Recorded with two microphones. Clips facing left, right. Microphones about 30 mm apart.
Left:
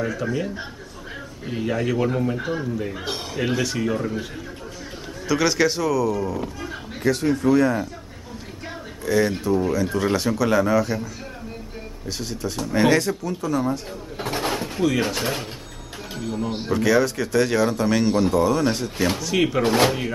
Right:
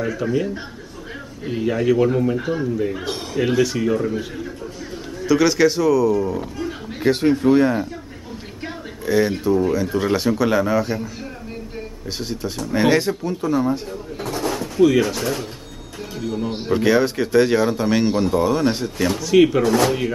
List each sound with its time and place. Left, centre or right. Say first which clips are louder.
0.0 s a man's voice: right 3 dB; centre
7.0 s speech: right 4 dB; right
9.0 s speech: right 2 dB; centre
12.2 s speech: right 2 dB; centre
14.2 s drawer open or close: right 1 dB; left
16.3 s speech: right 3 dB; centre
18.9 s speech: right 2 dB; centre
19.2 s a man's voice: right 10 dB; centre
19.6 s speech: right 1 dB; left